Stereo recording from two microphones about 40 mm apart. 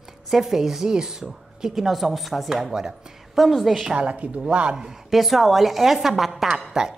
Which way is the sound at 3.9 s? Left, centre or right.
Right.